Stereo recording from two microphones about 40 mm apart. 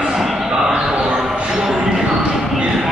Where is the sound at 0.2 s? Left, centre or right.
Centre.